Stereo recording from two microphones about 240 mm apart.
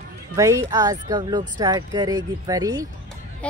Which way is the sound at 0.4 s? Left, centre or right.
Centre.